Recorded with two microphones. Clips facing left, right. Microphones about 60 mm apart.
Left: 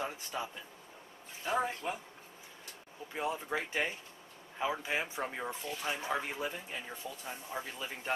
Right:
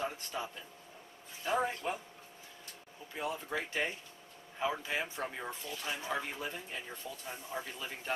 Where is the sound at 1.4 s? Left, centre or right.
Centre.